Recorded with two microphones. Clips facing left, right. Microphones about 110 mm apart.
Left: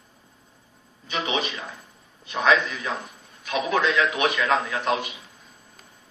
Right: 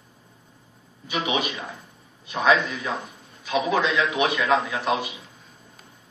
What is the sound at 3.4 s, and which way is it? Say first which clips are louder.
A man's voice: right 1 dB; 15° right (ahead or behind).